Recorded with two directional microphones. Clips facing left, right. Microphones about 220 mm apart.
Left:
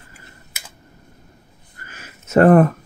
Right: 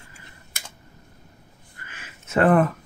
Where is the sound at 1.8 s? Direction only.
40° left (ahead or behind).